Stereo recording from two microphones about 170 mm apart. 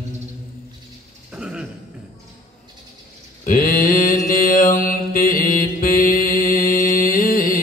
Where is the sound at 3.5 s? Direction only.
55° left (ahead or behind).